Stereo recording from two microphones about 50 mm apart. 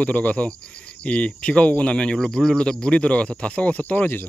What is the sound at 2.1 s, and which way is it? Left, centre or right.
Speech, centre.